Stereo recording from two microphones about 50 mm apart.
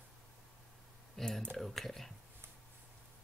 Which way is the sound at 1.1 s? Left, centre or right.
Centre.